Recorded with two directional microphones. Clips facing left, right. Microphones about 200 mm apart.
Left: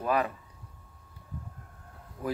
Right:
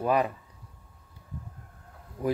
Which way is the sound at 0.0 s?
15° right (ahead or behind).